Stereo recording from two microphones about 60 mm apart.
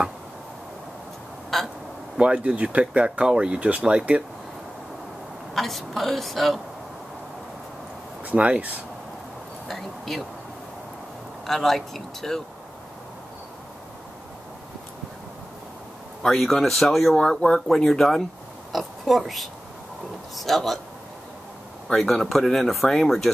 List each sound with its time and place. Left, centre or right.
1.5 s a sound: centre
2.1 s speech: centre
5.5 s speech: centre
8.3 s speech: right
9.7 s speech: centre
11.4 s speech: centre
16.2 s speech: centre
21.8 s speech: centre